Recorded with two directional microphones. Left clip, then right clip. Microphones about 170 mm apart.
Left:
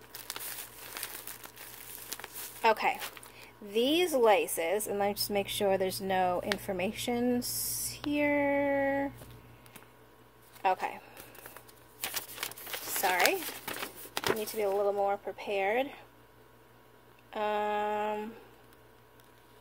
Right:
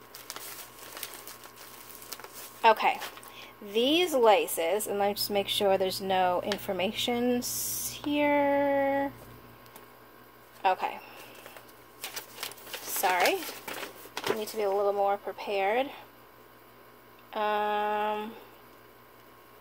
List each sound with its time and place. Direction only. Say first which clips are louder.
2.6 s speech: right 4 dB; 10° left (ahead or behind)
10.6 s speech: right 3 dB; 15° left (ahead or behind)
13.0 s speech: right 2 dB; 5° left (ahead or behind)
13.7 s printer: right 1 dB; 40° left (ahead or behind)
14.4 s speech: right 4 dB; 20° left (ahead or behind)
17.3 s speech: right 3 dB; 15° left (ahead or behind)